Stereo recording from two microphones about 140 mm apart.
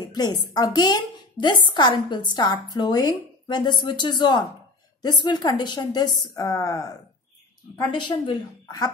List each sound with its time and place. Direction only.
0.1 s a woman's voice: 30° left (ahead or behind)
7.9 s a woman's voice: 30° left (ahead or behind)